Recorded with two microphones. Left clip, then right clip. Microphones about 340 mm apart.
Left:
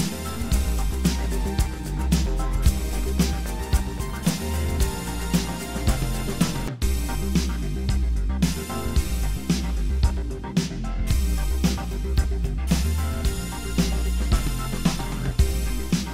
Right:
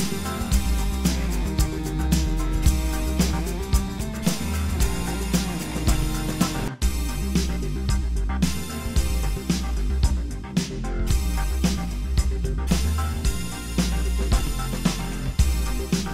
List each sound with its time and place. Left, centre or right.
1.0 s music: centre
13.7 s music: centre